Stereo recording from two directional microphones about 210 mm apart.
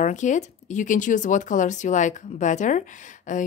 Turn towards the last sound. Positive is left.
turn(degrees=40)  # may be behind; listen again after turning